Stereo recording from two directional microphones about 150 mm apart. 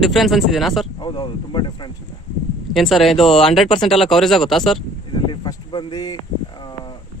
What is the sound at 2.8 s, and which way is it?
A man's voice, centre (ahead or behind).